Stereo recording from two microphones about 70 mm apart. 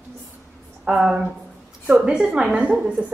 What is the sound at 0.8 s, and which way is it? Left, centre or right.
A woman's voice, centre.